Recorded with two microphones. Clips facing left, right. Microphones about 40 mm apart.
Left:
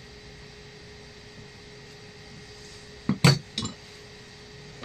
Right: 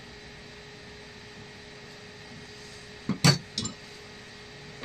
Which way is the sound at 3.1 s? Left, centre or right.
Left.